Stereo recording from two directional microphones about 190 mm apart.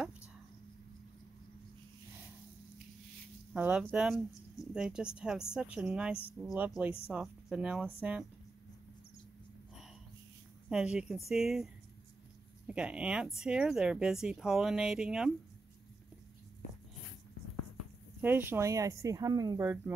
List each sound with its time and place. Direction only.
3.5 s speech: 10° right (ahead or behind)
10.7 s speech: 5° right (ahead or behind)
18.2 s speech: 10° right (ahead or behind)